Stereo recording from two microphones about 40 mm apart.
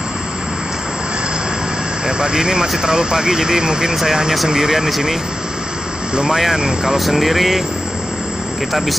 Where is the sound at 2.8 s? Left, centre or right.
Centre.